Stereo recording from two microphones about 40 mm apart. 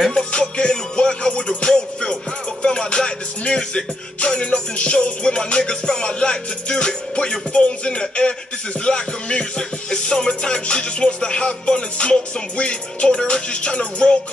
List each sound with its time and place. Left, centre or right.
0.1 s music: left